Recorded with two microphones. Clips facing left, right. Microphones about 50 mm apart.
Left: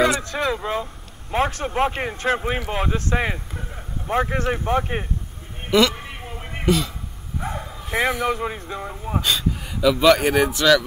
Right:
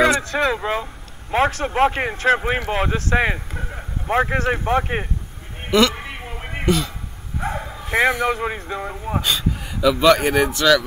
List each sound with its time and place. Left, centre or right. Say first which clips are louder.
0.0 s a sound: right 3 dB; centre
0.5 s speech: right 2 dB; centre
5.7 s a man's voice: right 1 dB; centre
5.9 s a sound: right 3 dB; centre
6.6 s a man's voice: even; centre
7.3 s bow-wow: right 3 dB; centre
8.4 s speech: right 2 dB; centre
9.2 s speech: left 2 dB; centre